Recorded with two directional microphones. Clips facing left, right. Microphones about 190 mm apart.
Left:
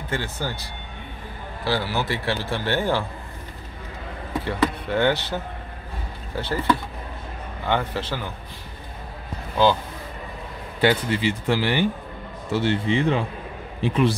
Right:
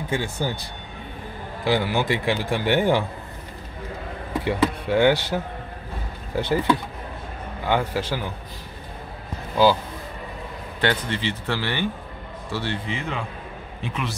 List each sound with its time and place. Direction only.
0.1 s a man's voice: 15° right (ahead or behind)
4.5 s a man's voice: 10° right (ahead or behind)
10.8 s a man's voice: 10° left (ahead or behind); by 14.1 s 30° left (ahead or behind)